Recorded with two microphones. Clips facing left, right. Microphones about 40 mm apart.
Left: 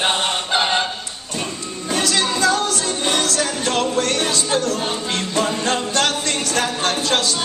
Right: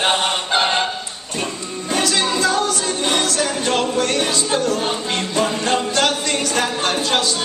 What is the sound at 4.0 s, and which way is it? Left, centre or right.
Music, right.